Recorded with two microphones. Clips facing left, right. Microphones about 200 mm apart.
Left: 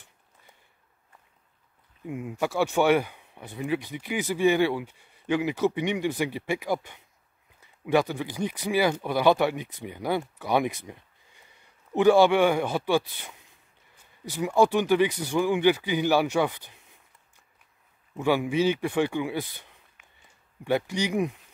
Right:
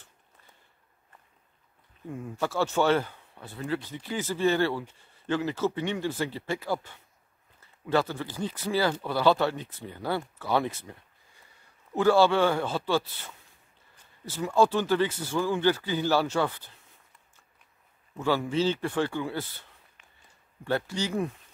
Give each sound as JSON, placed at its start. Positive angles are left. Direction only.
{"t": 2.0, "sound": "speech", "side_deg": 15}
{"t": 18.1, "sound": "speech", "side_deg": 15}